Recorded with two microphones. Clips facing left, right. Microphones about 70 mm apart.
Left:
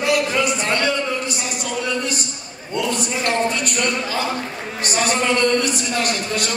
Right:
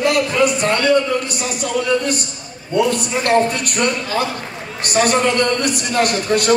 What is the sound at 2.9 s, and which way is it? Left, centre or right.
A man's voice, right.